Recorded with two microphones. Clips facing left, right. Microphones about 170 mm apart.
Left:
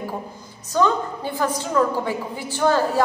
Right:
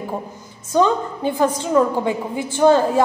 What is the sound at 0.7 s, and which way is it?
A woman's voice, 20° right (ahead or behind).